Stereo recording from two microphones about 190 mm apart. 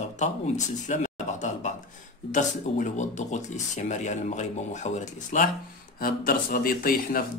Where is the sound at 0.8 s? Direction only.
40° left (ahead or behind).